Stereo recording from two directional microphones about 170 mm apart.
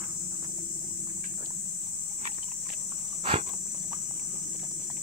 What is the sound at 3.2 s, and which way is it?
Dog, 35° right (ahead or behind).